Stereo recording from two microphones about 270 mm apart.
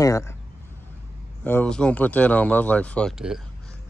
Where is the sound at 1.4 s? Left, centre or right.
Centre.